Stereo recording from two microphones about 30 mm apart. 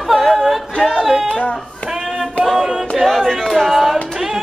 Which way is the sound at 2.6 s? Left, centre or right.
Centre.